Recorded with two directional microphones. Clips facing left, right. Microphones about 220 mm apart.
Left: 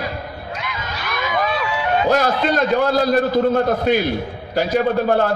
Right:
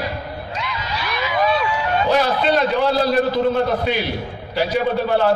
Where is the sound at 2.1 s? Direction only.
45° left (ahead or behind).